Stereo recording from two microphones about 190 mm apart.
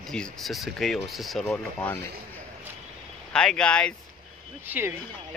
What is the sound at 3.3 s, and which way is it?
Speech, 5° left (ahead or behind).